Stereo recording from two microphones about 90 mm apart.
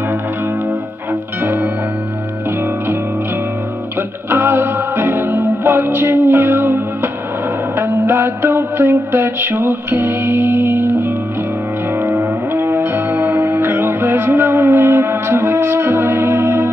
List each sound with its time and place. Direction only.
1.4 s music: 20° right (ahead or behind)
4.3 s music: 25° right (ahead or behind)